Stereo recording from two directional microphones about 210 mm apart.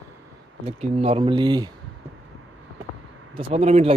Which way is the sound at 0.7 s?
30° right (ahead or behind).